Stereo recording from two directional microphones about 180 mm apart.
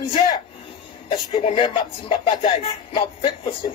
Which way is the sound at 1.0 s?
25° left (ahead or behind).